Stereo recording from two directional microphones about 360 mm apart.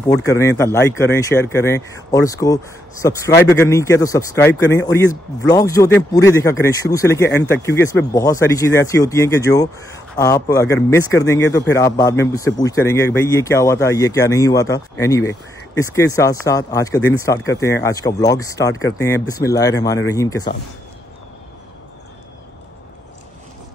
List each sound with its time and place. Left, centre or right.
0.1 s a man's voice: centre